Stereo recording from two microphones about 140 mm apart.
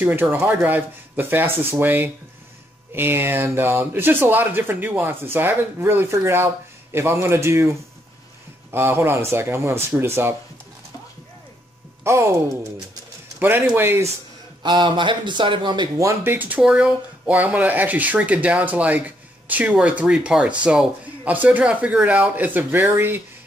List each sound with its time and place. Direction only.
0.0 s speech: 15° right (ahead or behind)
8.7 s speech: 15° right (ahead or behind)
12.0 s speech: 20° right (ahead or behind)
13.7 s speech: 15° right (ahead or behind)
14.6 s speech: 35° right (ahead or behind); by 23.2 s 15° right (ahead or behind)